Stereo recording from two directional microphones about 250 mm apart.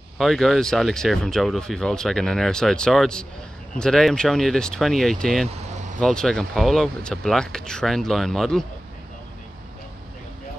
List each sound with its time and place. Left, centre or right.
0.2 s speech: centre